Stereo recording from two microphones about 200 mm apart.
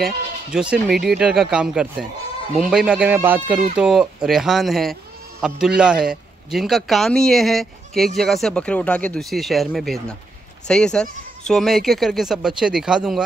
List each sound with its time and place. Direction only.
0.0 s a man's voice: 5° right (ahead or behind)